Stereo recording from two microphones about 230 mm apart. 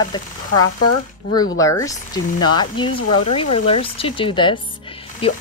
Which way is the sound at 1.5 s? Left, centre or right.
Centre.